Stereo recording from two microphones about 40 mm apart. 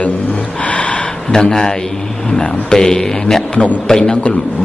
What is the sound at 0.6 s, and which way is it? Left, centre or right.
Gasp, left.